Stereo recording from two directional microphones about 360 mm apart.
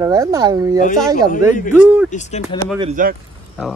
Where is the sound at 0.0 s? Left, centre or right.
Centre.